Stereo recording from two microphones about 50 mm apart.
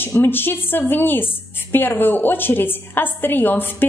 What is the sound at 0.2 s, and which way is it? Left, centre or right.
A woman's voice, left.